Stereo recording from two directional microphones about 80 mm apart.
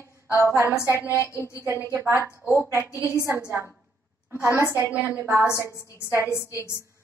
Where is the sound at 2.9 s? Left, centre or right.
Left.